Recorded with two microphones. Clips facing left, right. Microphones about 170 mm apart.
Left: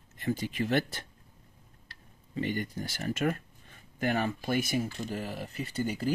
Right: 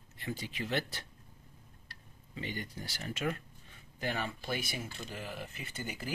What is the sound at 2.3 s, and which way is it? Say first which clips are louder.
Speech: left 8 dB; 50° left (ahead or behind).